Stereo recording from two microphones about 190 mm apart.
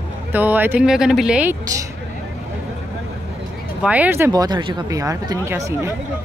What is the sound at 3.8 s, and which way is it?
Speech, 10° right (ahead or behind).